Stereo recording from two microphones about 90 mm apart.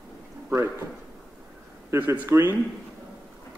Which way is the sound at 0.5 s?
30° right (ahead or behind).